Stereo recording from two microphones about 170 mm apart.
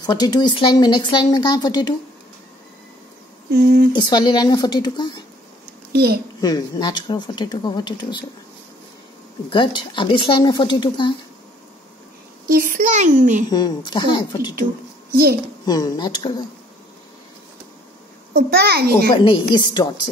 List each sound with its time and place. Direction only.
0.0 s speech: 25° left (ahead or behind)
3.5 s a child's voice: 60° right (ahead or behind)
3.9 s speech: 25° left (ahead or behind)
5.9 s a child's voice: 65° right (ahead or behind)
6.4 s speech: 25° left (ahead or behind)
9.5 s speech: 25° left (ahead or behind)
12.4 s a child's voice: 55° right (ahead or behind)
13.5 s speech: 25° left (ahead or behind)
15.6 s speech: 25° left (ahead or behind)
18.3 s a child's voice: 65° right (ahead or behind)
19.1 s speech: 30° left (ahead or behind)